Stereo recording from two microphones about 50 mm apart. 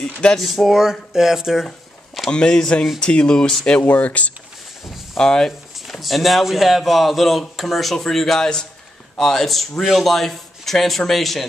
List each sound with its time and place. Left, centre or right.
0.0 s speech: centre
0.4 s speech: centre
2.3 s speech: centre; by 4.3 s left
5.1 s speech: centre
5.9 s speech: centre